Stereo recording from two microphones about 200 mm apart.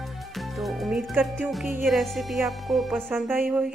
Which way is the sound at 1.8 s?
Centre (ahead or behind).